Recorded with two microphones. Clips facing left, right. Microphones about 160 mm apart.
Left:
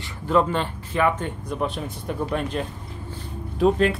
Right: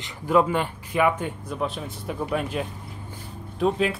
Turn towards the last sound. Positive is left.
turn(degrees=0)  # may be behind; listen again after turning